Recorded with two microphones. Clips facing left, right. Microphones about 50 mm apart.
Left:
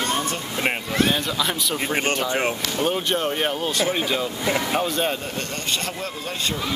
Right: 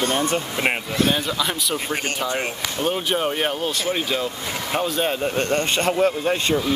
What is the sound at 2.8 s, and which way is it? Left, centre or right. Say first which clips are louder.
Speech: right 1 dB; centre.